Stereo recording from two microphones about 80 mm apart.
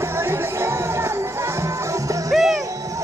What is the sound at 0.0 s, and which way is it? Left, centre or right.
Music, right.